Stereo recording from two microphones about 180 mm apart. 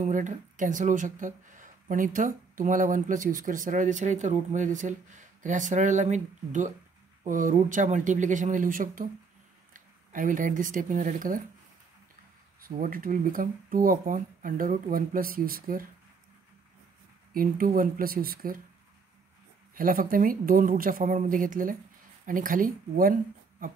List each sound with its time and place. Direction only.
0.0 s speech: 45° right (ahead or behind)
12.6 s speech: 50° right (ahead or behind)
17.3 s speech: 50° right (ahead or behind)
19.7 s speech: 50° right (ahead or behind)